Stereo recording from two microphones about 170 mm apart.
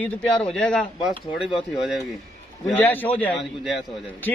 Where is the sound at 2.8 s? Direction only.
10° left (ahead or behind).